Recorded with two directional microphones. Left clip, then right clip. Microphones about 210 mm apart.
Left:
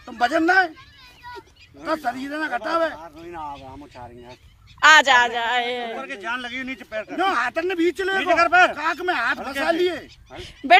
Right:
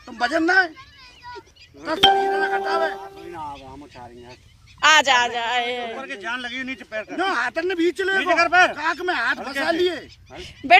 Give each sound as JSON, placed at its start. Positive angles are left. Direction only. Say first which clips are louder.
{"t": 0.0, "sound": "speech", "louder": "left 1 dB", "side_deg": 20}
{"t": 1.2, "sound": "children playing", "louder": "even", "side_deg": 40}
{"t": 1.9, "sound": "a man's voice", "louder": "right 9 dB", "side_deg": 15}
{"t": 7.2, "sound": "a man's voice", "louder": "left 1 dB", "side_deg": 20}
{"t": 8.2, "sound": "speech", "louder": "left 1 dB", "side_deg": 5}
{"t": 8.7, "sound": "a man's voice", "louder": "even", "side_deg": 15}
{"t": 9.4, "sound": "speech", "louder": "even", "side_deg": 0}
{"t": 9.7, "sound": "a man's voice", "louder": "even", "side_deg": 15}